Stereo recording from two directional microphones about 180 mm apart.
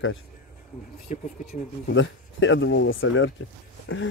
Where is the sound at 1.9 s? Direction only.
90° left.